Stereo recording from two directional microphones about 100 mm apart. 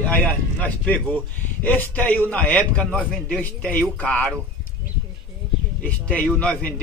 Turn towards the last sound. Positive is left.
turn(degrees=15)  # may be behind; listen again after turning